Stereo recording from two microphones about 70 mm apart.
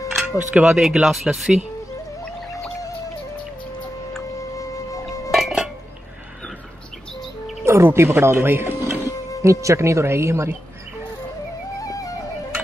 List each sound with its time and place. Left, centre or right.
0.3 s speech: centre
4.4 s music: left
5.3 s dishes: centre
7.6 s speech: right
9.4 s speech: right
11.8 s music: left